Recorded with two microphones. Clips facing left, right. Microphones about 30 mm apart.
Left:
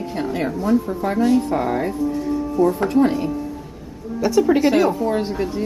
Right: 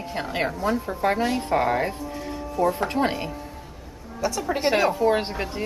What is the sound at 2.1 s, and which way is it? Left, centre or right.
Music, right.